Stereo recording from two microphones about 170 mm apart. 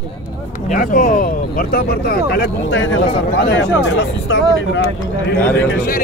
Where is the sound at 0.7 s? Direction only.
55° left (ahead or behind); by 4.8 s 90° left.